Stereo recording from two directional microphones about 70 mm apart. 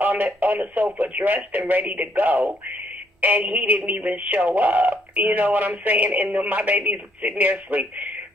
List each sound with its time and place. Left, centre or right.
0.0 s speech: right